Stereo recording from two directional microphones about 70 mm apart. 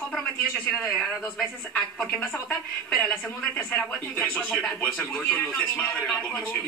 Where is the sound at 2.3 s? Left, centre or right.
Left.